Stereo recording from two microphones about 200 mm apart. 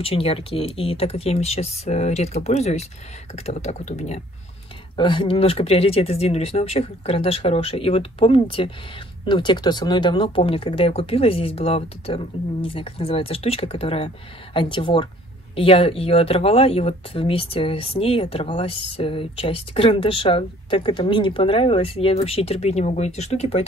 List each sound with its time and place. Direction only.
0.0 s speech: 30° left (ahead or behind)
4.9 s speech: 25° left (ahead or behind)